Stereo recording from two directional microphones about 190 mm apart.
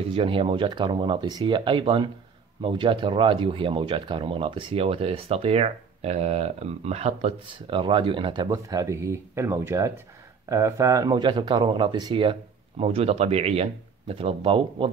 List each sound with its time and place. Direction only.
0.1 s speech: 30° right (ahead or behind)